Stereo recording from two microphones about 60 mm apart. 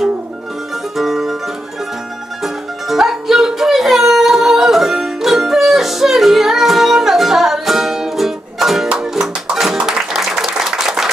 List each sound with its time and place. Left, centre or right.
0.9 s music: centre
2.4 s music: centre
9.8 s applause: centre